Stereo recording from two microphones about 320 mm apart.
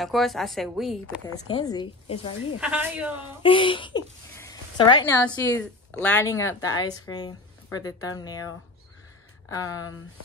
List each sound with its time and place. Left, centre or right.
0.0 s a woman's voice: centre
1.2 s speech: centre
2.6 s a woman's voice: centre
3.4 s a sound: centre
5.2 s a woman's voice: centre
6.8 s speech: left
7.1 s speech: centre
9.5 s speech: centre